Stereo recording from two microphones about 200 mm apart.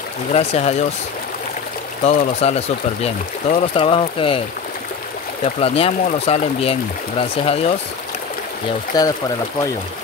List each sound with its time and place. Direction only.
0.3 s speech: 30° left (ahead or behind)
2.0 s speech: 30° left (ahead or behind)
5.4 s speech: 30° left (ahead or behind)
8.9 s speech: 20° left (ahead or behind)